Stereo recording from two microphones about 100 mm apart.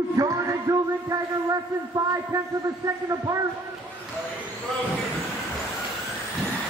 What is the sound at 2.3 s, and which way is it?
A man's voice, 35° right (ahead or behind).